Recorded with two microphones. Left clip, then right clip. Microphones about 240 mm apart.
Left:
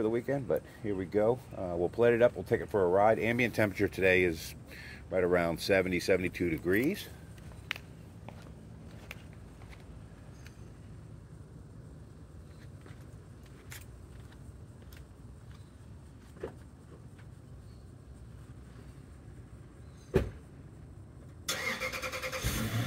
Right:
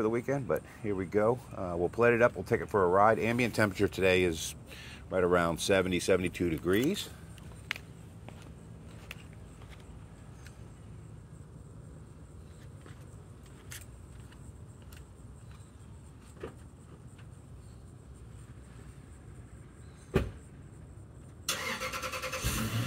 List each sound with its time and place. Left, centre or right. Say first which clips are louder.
0.0 s speech: right 1 dB; right
7.7 s a sound: right 1 dB; right
21.5 s vehicle: even; centre